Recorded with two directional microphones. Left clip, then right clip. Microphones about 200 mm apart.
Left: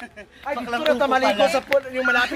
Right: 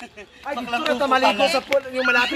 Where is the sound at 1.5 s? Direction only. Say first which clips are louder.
Even; 30° right (ahead or behind).